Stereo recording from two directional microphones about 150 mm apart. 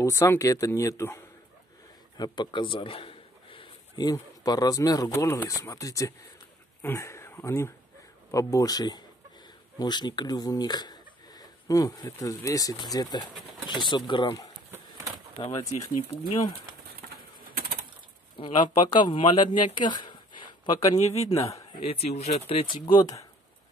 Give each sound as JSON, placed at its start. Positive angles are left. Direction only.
{"t": 0.0, "sound": "speech", "side_deg": 15}
{"t": 2.1, "sound": "a man's voice", "side_deg": 30}
{"t": 14.7, "sound": "bird", "side_deg": -20}
{"t": 15.3, "sound": "speech", "side_deg": 25}
{"t": 17.5, "sound": "bird", "side_deg": -80}
{"t": 18.4, "sound": "speech", "side_deg": 35}
{"t": 19.7, "sound": "a sound", "side_deg": 30}
{"t": 21.0, "sound": "speech", "side_deg": 45}
{"t": 21.4, "sound": "speech", "side_deg": 20}
{"t": 21.7, "sound": "speech", "side_deg": 40}
{"t": 22.9, "sound": "speech", "side_deg": 25}